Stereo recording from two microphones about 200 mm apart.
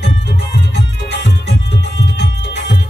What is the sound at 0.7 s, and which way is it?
Music, 60° left (ahead or behind).